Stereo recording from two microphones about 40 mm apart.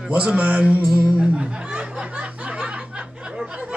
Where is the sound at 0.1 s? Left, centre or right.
Right.